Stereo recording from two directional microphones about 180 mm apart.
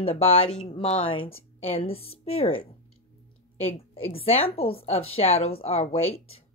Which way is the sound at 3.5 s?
35° left (ahead or behind).